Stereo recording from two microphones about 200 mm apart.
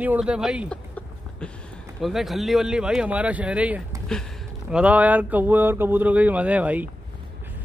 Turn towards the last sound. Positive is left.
turn(degrees=-5)  # may be behind; listen again after turning